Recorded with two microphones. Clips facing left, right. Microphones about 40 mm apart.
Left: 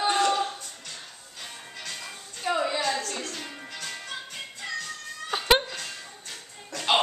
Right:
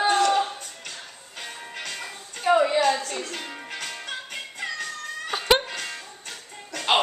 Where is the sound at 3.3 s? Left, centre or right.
Right.